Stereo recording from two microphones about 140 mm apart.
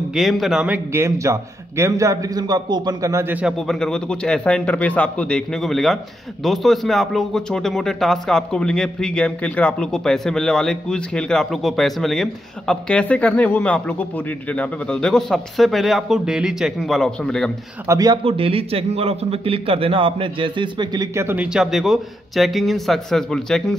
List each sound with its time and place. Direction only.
0.1 s a man's voice: centre (ahead or behind)
0.9 s a man's voice: 20° right (ahead or behind)
3.6 s a man's voice: 5° left (ahead or behind)
17.8 s a man's voice: 25° right (ahead or behind)
18.2 s a man's voice: 40° right (ahead or behind); by 21.5 s 15° right (ahead or behind)
21.5 s a man's voice: centre (ahead or behind)